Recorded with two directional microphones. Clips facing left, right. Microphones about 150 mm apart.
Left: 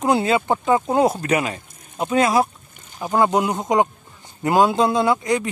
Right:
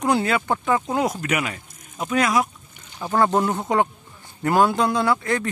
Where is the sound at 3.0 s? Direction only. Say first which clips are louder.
Left 1 dB; 15° left (ahead or behind).